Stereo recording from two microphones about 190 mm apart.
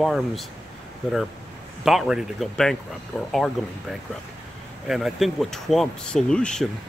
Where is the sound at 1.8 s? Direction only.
Centre (ahead or behind).